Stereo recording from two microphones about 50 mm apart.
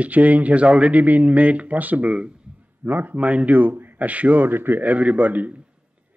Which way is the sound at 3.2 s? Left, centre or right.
Right.